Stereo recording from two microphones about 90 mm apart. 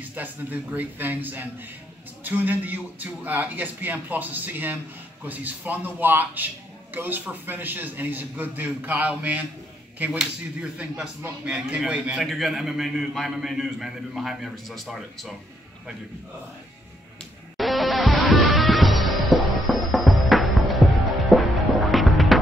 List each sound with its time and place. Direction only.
0.0 s a man's voice: 20° right (ahead or behind); by 15.3 s centre (ahead or behind)
17.6 s music: centre (ahead or behind)